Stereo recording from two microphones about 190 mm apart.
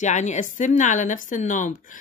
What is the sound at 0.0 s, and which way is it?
A woman's voice, 40° left (ahead or behind).